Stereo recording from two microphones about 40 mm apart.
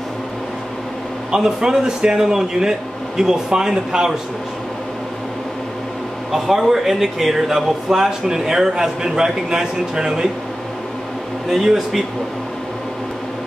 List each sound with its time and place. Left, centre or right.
1.3 s speech: centre
6.3 s speech: centre
11.5 s speech: centre